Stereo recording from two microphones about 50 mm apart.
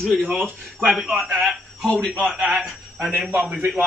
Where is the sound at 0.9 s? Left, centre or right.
Centre.